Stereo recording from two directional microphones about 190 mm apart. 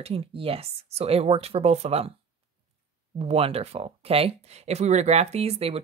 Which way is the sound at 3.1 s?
30° right (ahead or behind).